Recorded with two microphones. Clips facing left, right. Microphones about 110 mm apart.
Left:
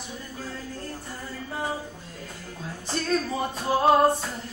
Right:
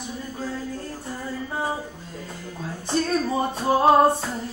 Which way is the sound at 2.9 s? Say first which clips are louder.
Right 4 dB; 25° right (ahead or behind).